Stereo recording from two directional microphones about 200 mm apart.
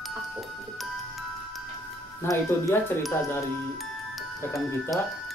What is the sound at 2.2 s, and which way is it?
Speech, 15° left (ahead or behind).